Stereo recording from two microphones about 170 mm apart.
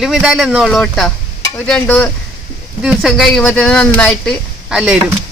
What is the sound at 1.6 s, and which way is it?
Stir, 5° left (ahead or behind).